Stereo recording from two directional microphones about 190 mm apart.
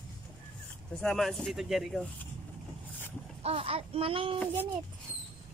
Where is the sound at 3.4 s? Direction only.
30° right (ahead or behind).